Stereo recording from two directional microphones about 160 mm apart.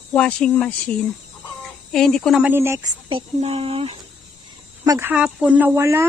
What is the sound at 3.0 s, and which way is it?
Speech, 35° right (ahead or behind).